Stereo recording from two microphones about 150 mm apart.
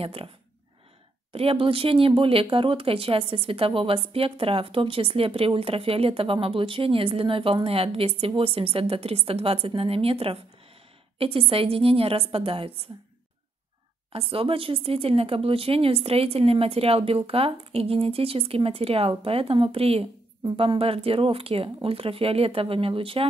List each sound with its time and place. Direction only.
0.0 s speech: 40° right (ahead or behind)
1.3 s speech: 40° right (ahead or behind)
14.1 s speech: 40° right (ahead or behind)